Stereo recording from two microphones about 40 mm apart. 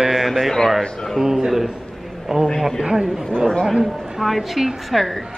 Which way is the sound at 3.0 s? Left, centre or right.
Centre.